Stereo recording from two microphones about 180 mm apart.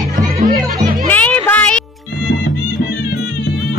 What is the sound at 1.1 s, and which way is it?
Music, 10° left (ahead or behind).